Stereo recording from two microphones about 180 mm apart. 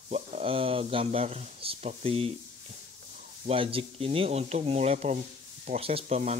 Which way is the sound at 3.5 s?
30° right (ahead or behind).